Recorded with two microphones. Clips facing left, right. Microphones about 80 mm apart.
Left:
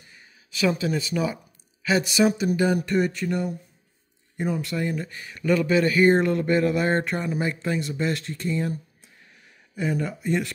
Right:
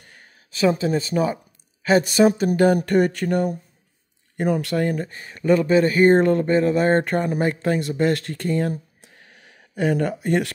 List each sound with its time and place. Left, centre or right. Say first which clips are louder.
0.0 s a sound: right 3 dB; right
0.5 s speech: right 4 dB; right
4.4 s speech: right 6 dB; right
5.0 s speech: right 4 dB; right